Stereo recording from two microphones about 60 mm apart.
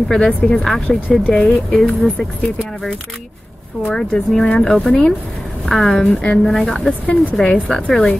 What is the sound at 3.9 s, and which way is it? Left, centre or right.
A woman's voice, centre.